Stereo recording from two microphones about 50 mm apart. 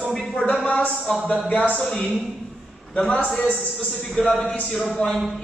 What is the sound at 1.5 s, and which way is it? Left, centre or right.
Speech, left.